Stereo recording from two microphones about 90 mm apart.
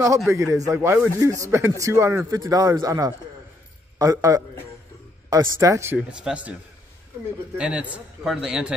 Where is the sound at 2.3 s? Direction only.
45° right (ahead or behind).